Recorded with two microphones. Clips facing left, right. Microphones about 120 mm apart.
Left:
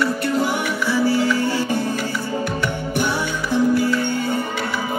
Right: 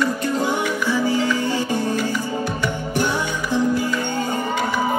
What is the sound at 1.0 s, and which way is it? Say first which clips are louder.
Music: left 4 dB; 15° right (ahead or behind).